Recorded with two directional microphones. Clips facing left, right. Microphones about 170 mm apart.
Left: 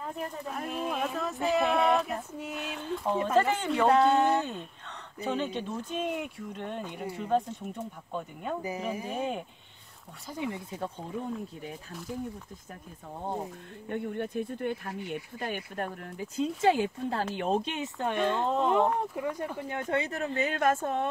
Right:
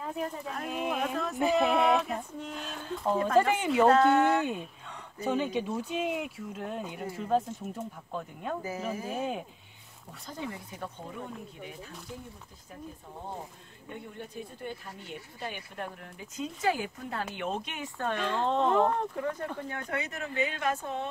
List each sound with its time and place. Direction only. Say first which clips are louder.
0.0 s speech: right 1 dB; centre (ahead or behind)
3.3 s speech: right 2 dB; 10° right (ahead or behind)
3.9 s speech: even; 15° left (ahead or behind)
5.2 s speech: right 2 dB; 10° right (ahead or behind)
10.3 s speech: left 4 dB; 20° left (ahead or behind)
13.8 s speech: left 9 dB; 60° left (ahead or behind)
16.3 s speech: left 5 dB; 25° left (ahead or behind)
18.4 s speech: right 3 dB; 5° left (ahead or behind)
19.7 s speech: left 5 dB; 25° left (ahead or behind); by 21.1 s 50° left (ahead or behind)